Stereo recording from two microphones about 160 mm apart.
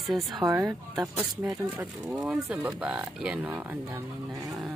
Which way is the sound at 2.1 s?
Centre (ahead or behind).